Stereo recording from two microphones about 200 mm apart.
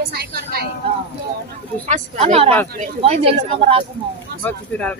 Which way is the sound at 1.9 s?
35° right (ahead or behind).